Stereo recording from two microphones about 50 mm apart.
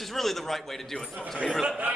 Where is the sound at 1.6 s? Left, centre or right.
Right.